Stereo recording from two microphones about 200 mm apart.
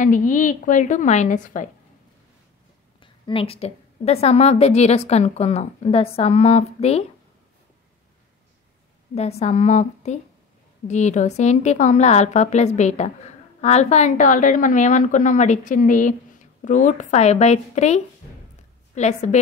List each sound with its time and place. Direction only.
0.0 s a woman's voice: 40° left (ahead or behind)
3.0 s a woman's voice: 25° left (ahead or behind)
9.1 s a woman's voice: 30° left (ahead or behind)